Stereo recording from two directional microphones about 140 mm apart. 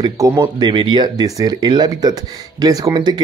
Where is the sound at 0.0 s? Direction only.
25° right (ahead or behind).